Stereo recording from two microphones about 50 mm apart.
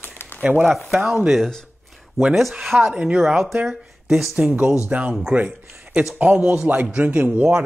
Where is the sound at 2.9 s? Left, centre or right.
Right.